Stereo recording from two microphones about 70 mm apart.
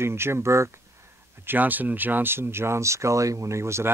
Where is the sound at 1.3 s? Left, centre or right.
Right.